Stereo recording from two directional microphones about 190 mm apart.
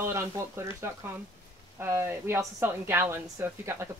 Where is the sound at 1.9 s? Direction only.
15° right (ahead or behind).